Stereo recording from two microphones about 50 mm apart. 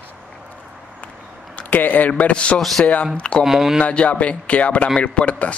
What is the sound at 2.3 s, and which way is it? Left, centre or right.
Speech, left.